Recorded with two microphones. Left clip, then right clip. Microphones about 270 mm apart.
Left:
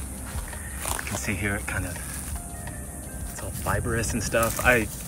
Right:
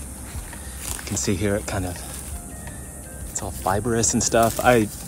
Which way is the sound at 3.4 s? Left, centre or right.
Centre.